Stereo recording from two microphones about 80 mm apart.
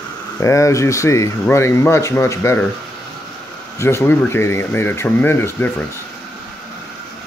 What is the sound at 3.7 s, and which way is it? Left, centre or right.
Speech, left.